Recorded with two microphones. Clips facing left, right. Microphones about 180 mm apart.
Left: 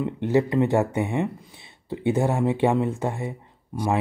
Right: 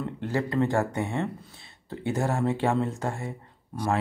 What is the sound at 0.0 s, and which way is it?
Speech, 20° left (ahead or behind).